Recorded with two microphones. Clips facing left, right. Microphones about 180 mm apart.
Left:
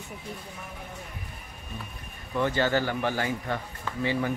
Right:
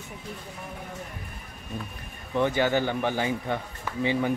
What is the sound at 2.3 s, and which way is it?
Speech, 15° right (ahead or behind).